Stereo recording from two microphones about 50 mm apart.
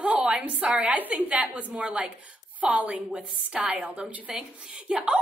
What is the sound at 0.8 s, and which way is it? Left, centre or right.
Speech, right.